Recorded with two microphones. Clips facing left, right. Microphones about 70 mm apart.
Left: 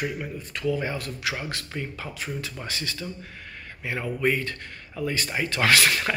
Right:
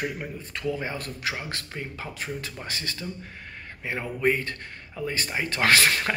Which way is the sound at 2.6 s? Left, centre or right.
Right.